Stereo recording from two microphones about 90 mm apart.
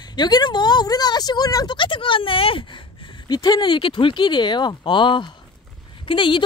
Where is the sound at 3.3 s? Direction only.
55° left (ahead or behind).